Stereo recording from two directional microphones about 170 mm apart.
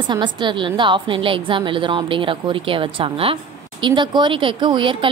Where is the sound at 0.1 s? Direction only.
25° right (ahead or behind).